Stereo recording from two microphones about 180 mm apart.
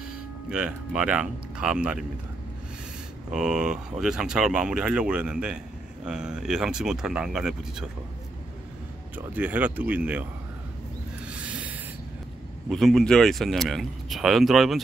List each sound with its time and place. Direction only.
0.5 s speech: 5° right (ahead or behind)
3.3 s speech: 5° right (ahead or behind)
9.1 s speech: 10° right (ahead or behind)
11.2 s a sound: 10° right (ahead or behind)
12.6 s speech: centre (ahead or behind)